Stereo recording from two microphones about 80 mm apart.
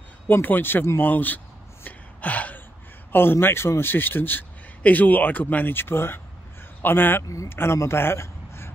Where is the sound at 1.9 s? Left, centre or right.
Centre.